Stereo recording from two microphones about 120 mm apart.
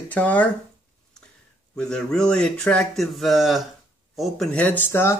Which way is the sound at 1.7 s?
5° left (ahead or behind).